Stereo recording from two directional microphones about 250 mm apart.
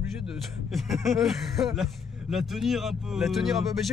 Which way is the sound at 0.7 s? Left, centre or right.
Centre.